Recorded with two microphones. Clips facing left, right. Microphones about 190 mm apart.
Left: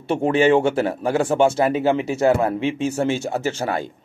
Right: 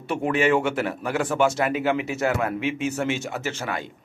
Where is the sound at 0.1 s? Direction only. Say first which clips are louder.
Left 5 dB; 30° left (ahead or behind).